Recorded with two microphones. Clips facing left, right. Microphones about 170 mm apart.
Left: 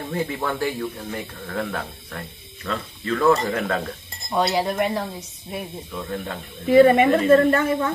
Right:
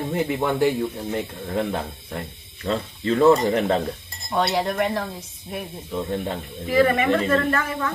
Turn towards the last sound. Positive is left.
turn(degrees=30)  # may be behind; listen again after turning